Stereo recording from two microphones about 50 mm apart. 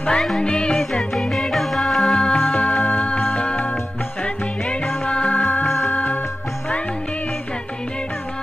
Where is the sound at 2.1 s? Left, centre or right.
Centre.